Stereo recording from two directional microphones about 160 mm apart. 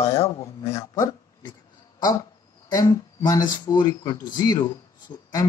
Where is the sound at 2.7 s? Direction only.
25° left (ahead or behind).